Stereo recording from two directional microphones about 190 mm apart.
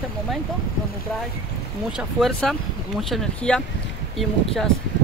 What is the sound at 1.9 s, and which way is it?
Speech, centre (ahead or behind).